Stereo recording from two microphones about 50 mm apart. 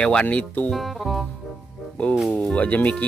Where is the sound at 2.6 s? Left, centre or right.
Left.